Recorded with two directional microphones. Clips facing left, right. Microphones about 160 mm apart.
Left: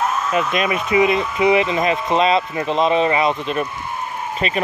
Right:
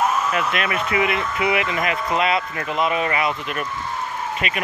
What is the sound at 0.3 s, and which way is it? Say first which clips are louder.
Speech: left 4 dB; 20° left (ahead or behind).